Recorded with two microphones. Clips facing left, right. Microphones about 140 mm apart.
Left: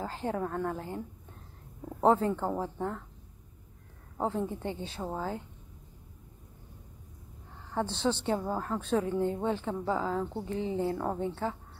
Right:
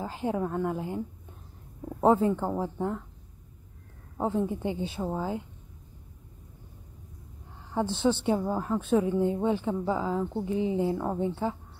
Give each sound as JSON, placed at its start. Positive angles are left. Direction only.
{"t": 0.0, "sound": "a woman's voice", "side_deg": -10}
{"t": 4.2, "sound": "a woman's voice", "side_deg": -5}
{"t": 7.8, "sound": "a woman's voice", "side_deg": -10}